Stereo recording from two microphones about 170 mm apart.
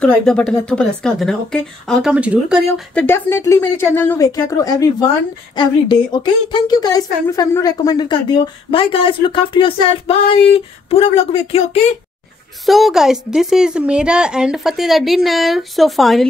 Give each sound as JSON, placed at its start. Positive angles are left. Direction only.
{"t": 0.0, "sound": "a woman's voice", "side_deg": 5}
{"t": 2.9, "sound": "speech", "side_deg": 10}
{"t": 12.6, "sound": "a woman's voice", "side_deg": 0}